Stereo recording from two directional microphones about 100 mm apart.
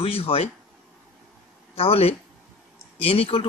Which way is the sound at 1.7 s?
80° left.